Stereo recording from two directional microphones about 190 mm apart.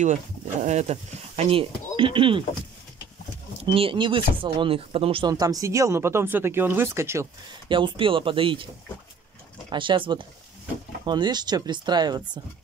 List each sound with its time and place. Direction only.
0.0 s speech: 40° right (ahead or behind)
3.6 s speech: 30° right (ahead or behind)
7.6 s speech: 25° right (ahead or behind)
9.7 s speech: 25° right (ahead or behind)